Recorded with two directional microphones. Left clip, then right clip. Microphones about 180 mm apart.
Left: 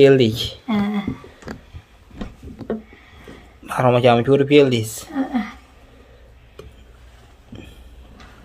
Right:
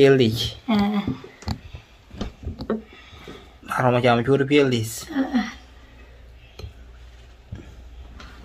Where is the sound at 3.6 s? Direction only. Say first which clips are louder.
Left 4 dB; 20° left (ahead or behind).